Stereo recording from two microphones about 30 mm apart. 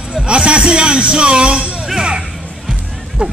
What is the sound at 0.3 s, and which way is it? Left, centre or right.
A man's voice, right.